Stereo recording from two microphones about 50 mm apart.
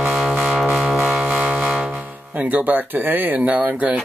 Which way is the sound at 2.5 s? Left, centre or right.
Right.